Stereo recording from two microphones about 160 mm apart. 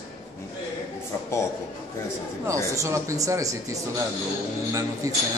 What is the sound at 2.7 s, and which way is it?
Speech, 20° right (ahead or behind).